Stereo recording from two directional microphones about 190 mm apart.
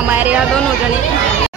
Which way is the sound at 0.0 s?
10° right (ahead or behind).